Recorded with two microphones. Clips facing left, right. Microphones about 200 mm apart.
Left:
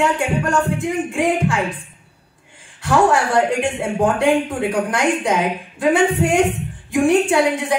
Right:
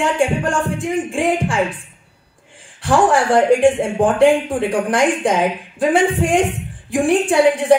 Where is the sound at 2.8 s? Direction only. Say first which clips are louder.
Right 1 dB; 30° right (ahead or behind).